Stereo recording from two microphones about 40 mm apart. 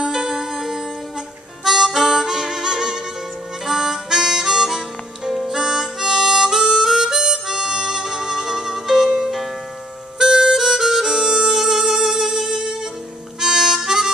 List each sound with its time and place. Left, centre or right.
0.0 s music: centre
1.6 s harmonica: centre
11.1 s music: centre
13.4 s harmonica: centre